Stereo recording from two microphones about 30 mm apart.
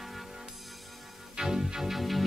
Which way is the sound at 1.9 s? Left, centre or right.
Centre.